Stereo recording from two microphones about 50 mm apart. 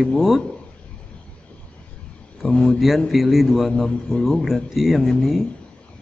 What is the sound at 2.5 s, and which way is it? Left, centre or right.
Speech, centre.